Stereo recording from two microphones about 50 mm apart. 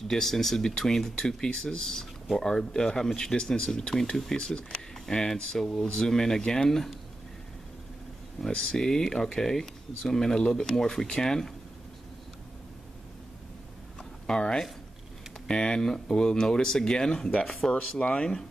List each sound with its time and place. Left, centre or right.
0.1 s speech: centre
8.5 s speech: centre
14.2 s speech: centre